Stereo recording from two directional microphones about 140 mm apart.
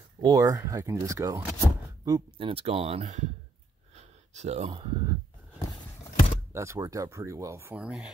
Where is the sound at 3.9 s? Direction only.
50° right (ahead or behind).